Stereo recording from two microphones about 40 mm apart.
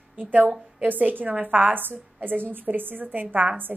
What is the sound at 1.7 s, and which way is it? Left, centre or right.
A woman's voice, right.